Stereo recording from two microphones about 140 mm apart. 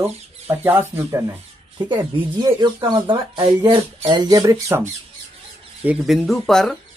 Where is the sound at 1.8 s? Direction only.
30° right (ahead or behind).